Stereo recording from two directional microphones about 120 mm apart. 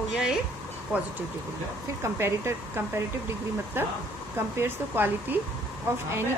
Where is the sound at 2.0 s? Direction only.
20° right (ahead or behind).